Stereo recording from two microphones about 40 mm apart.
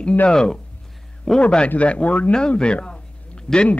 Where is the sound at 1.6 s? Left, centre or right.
Left.